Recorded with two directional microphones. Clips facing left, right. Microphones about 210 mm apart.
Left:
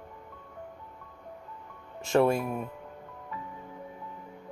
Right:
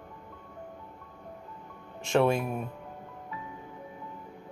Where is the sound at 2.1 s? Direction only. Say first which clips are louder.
Left 1 dB; centre (ahead or behind).